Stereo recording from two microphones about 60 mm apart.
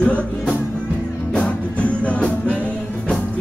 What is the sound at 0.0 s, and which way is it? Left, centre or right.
Music, centre.